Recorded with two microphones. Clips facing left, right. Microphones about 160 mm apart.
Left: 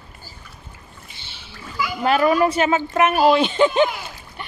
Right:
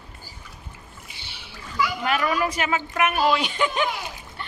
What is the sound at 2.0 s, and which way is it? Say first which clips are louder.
A woman's voice: left 10 dB; 35° left (ahead or behind).